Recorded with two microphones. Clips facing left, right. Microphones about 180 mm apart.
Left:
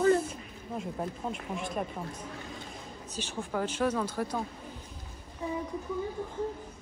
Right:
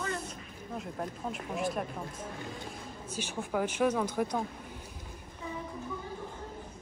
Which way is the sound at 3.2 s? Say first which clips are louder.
Right 1 dB; 15° right (ahead or behind).